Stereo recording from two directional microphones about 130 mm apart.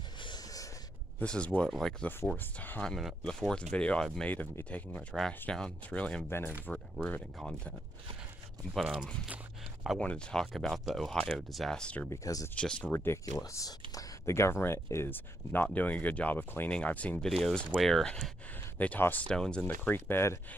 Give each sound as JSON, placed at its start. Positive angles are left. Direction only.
{"t": 0.2, "sound": "a sound", "side_deg": 30}
{"t": 1.2, "sound": "speech", "side_deg": 10}
{"t": 2.0, "sound": "speech", "side_deg": 15}
{"t": 2.9, "sound": "speech", "side_deg": 0}
{"t": 8.7, "sound": "speech", "side_deg": 0}
{"t": 12.1, "sound": "speech", "side_deg": 25}
{"t": 12.5, "sound": "speech", "side_deg": 10}
{"t": 12.9, "sound": "speech", "side_deg": 20}